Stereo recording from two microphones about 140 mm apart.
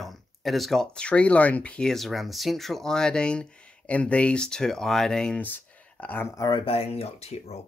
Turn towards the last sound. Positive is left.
turn(degrees=50)  # may be behind; listen again after turning